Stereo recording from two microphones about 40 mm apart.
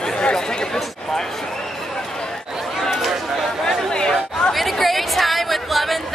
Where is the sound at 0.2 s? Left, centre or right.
Left.